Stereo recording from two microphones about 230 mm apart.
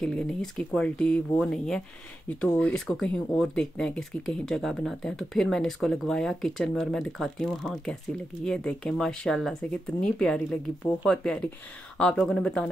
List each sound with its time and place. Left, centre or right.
0.0 s speech: centre